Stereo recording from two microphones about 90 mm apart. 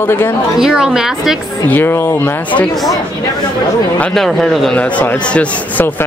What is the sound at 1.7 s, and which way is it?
Speech, 25° left (ahead or behind).